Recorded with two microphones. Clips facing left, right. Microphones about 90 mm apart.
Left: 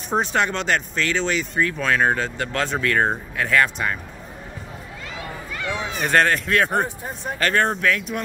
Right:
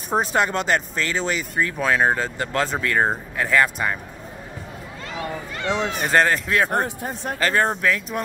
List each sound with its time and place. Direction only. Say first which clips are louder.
0.1 s speech: right 1 dB; 5° right (ahead or behind)
5.7 s speech: right 5 dB; 70° right (ahead or behind)
6.0 s speech: left 1 dB; centre (ahead or behind)